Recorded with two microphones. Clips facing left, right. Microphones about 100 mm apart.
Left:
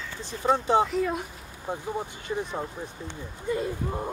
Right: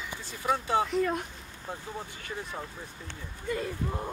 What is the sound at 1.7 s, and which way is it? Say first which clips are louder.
Speech: left 7 dB; 20° left (ahead or behind).